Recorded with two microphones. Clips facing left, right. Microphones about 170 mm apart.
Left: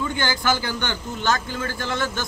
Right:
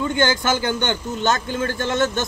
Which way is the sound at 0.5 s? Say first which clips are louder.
Right 3 dB; 20° right (ahead or behind).